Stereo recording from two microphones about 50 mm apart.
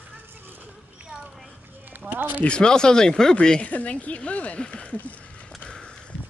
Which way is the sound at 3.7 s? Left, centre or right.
Left.